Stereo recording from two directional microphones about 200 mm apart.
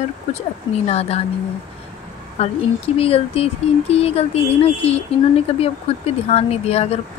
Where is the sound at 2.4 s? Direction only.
30° left (ahead or behind).